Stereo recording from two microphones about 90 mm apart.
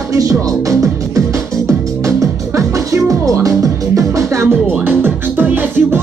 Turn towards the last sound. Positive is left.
turn(degrees=-20)  # may be behind; listen again after turning